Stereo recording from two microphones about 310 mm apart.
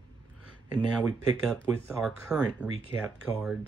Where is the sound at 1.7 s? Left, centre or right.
Centre.